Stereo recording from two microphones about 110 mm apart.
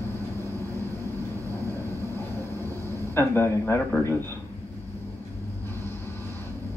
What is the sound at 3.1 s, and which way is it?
Speech, 20° left (ahead or behind).